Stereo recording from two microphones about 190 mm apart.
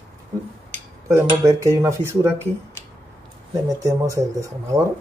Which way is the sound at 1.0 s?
15° right (ahead or behind).